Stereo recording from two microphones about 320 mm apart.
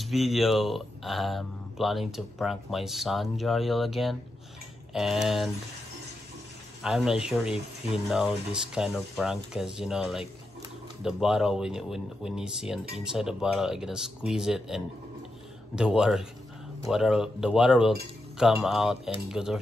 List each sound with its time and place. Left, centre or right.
0.0 s speech: centre
6.8 s speech: centre